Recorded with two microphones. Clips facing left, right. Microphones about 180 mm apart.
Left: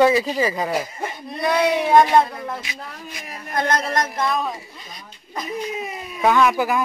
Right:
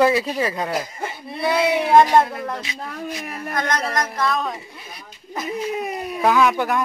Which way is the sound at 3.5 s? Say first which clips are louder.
Left 2 dB; 30° left (ahead or behind).